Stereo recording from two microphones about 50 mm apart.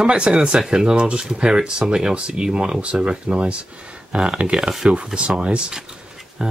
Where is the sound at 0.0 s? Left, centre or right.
Centre.